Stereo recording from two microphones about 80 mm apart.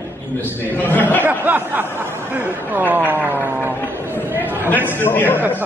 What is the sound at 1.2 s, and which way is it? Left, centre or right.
A man's voice, right.